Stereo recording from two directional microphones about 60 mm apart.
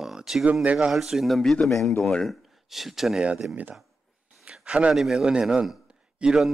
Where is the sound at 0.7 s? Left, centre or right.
Centre.